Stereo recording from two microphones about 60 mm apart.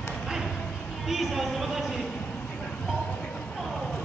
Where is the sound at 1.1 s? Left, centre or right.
Centre.